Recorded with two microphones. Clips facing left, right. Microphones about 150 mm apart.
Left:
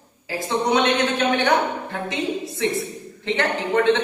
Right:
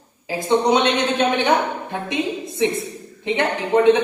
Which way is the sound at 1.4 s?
20° right (ahead or behind).